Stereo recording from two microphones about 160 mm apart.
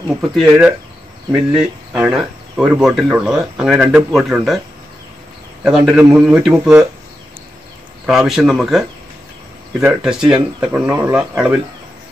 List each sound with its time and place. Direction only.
0.4 s speech: 5° right (ahead or behind)
5.6 s speech: 5° right (ahead or behind)
8.1 s speech: 5° right (ahead or behind)